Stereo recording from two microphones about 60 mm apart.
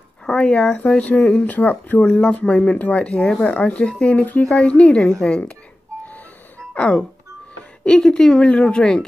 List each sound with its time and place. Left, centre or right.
0.3 s speech: centre
6.7 s a woman's voice: centre